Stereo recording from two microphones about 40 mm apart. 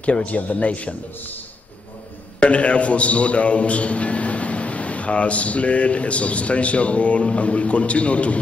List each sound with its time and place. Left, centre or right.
0.0 s a man's voice: left
2.4 s a man's voice: left